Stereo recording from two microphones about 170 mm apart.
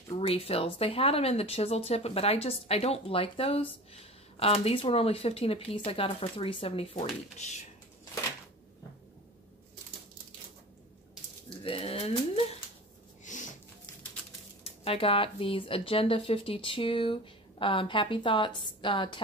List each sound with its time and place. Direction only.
0.1 s speech: 35° left (ahead or behind)
11.6 s speech: 35° left (ahead or behind)
13.2 s a sound: 45° left (ahead or behind)
14.6 s speech: 35° left (ahead or behind)